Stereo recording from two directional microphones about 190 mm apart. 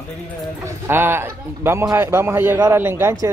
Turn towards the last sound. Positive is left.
turn(degrees=-15)  # may be behind; listen again after turning